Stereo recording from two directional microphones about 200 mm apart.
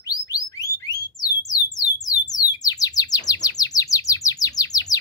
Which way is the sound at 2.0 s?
20° left (ahead or behind).